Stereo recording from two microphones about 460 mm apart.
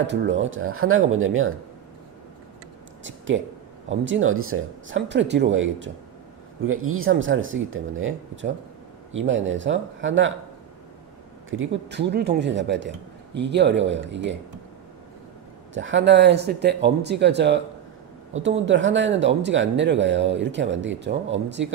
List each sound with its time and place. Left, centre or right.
0.0 s speech: right
3.0 s a sound: right
3.9 s speech: right
11.5 s speech: right
15.7 s speech: right